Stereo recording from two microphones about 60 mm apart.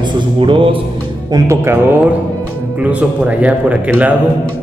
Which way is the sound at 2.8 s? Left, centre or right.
Right.